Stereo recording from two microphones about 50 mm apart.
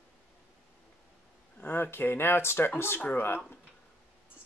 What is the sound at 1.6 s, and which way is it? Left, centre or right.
Speech, left.